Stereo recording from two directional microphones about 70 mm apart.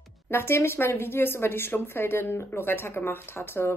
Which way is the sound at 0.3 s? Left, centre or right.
Left.